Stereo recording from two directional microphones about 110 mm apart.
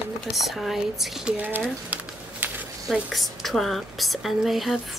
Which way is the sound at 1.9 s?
15° right (ahead or behind).